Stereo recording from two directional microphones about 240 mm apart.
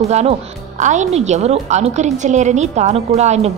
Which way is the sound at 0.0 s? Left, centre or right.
Right.